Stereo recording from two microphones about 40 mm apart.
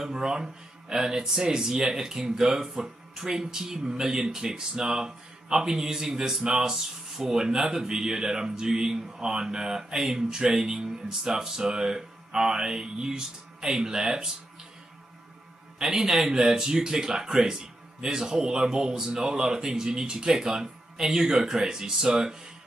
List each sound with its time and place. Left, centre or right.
0.0 s speech: centre
15.8 s speech: centre